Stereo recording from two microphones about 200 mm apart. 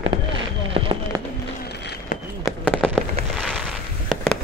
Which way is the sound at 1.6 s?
55° left (ahead or behind).